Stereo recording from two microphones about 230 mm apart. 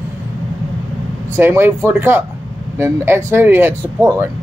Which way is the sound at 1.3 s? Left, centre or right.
Centre.